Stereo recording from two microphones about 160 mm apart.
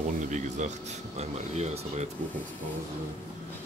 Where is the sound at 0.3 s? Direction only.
50° right (ahead or behind).